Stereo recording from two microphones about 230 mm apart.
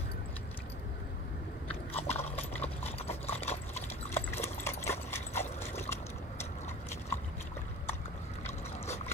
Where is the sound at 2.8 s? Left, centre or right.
Left.